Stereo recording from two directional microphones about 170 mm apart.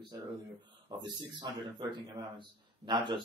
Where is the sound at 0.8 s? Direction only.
25° right (ahead or behind).